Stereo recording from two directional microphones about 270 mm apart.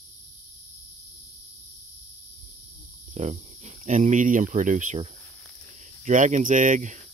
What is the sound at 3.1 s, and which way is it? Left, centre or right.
Speech, right.